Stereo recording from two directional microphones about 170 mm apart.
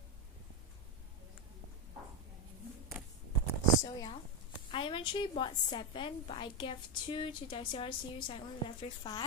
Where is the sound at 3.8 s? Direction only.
25° left (ahead or behind).